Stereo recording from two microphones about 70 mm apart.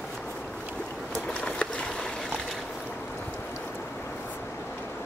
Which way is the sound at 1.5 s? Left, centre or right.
Centre.